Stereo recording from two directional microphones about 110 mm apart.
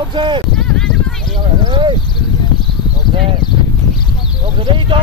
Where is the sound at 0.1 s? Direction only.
45° right (ahead or behind).